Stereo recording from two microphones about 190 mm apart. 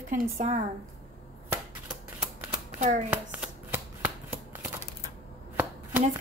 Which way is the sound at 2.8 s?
40° right (ahead or behind).